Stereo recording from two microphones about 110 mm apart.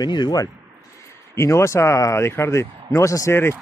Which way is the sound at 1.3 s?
25° left (ahead or behind).